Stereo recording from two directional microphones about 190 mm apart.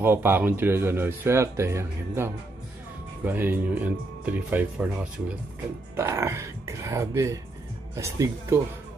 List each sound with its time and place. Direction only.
0.0 s speech: 10° right (ahead or behind)